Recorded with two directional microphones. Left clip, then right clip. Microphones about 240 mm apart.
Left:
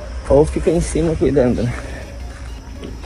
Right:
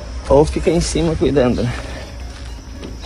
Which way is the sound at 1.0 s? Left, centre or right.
Right.